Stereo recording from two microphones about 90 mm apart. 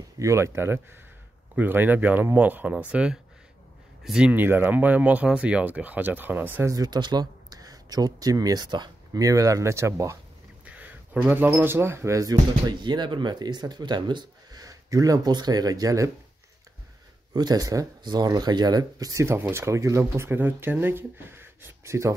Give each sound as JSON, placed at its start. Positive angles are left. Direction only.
{"t": 0.2, "sound": "speech", "side_deg": -35}
{"t": 4.3, "sound": "speech", "side_deg": -20}
{"t": 6.7, "sound": "speech", "side_deg": -45}
{"t": 9.2, "sound": "speech", "side_deg": -40}
{"t": 10.6, "sound": "speech", "side_deg": -15}
{"t": 17.3, "sound": "speech", "side_deg": -50}
{"t": 19.2, "sound": "speech", "side_deg": -25}